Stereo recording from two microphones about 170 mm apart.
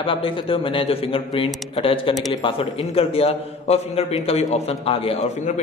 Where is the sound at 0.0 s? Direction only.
30° left (ahead or behind).